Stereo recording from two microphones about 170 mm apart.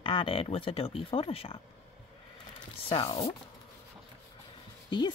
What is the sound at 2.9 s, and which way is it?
Speech, 35° left (ahead or behind).